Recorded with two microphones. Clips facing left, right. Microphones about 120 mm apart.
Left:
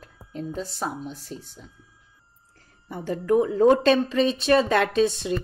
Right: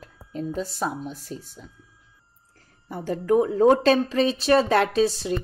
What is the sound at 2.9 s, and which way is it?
A woman's voice, 40° right (ahead or behind).